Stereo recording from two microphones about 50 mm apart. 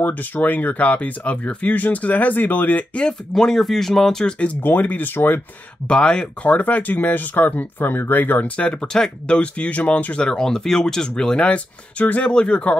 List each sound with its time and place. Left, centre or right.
0.0 s speech: left
3.0 s speech: centre
4.6 s speech: left
5.9 s speech: centre; by 8.5 s left
8.5 s speech: centre
9.4 s speech: left
10.2 s speech: centre